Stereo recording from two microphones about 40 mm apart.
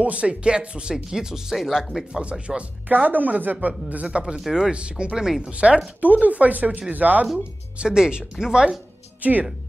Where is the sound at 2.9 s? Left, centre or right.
Right.